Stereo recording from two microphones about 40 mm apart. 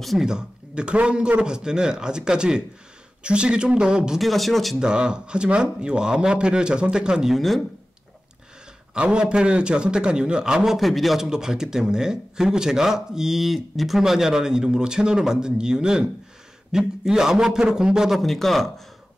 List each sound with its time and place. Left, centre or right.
0.2 s speech: centre
4.2 s speech: centre
4.7 s speech: right
7.2 s speech: centre
8.9 s speech: right
10.8 s speech: centre
11.1 s a man's voice: centre
18.1 s speech: centre